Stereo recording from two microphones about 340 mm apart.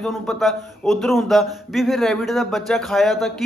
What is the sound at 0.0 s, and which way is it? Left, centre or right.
A man's voice, centre.